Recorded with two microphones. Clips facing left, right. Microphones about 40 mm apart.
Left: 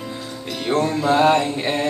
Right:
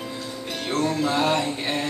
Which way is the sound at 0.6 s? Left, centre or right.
Left.